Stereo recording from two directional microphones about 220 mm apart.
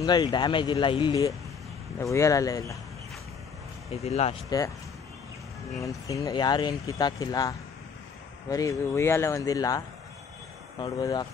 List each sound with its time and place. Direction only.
0.0 s speech: 20° left (ahead or behind)
3.9 s speech: 30° left (ahead or behind)
4.5 s speech: 15° left (ahead or behind)
5.8 s speech: 15° left (ahead or behind)